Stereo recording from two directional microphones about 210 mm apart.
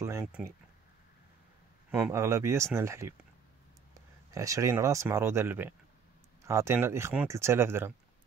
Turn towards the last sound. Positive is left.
turn(degrees=-10)  # may be behind; listen again after turning